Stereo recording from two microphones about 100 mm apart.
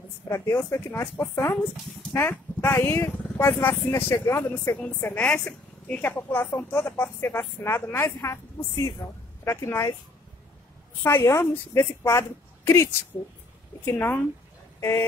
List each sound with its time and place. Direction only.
0.3 s a woman's voice: 30° left (ahead or behind)
4.7 s a woman's voice: 15° left (ahead or behind)
8.2 s a woman's voice: 35° left (ahead or behind)
11.0 s a woman's voice: 25° left (ahead or behind)